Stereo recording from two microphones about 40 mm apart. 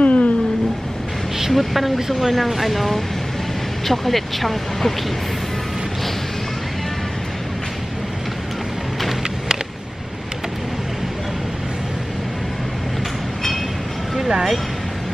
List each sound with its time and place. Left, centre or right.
0.0 s a sound: left
1.5 s speech: centre
14.1 s vehicle: centre